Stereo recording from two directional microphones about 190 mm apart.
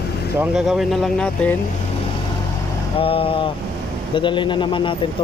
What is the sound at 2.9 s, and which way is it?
Speech, 30° left (ahead or behind).